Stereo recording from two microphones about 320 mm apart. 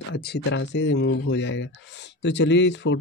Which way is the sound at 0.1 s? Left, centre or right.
Left.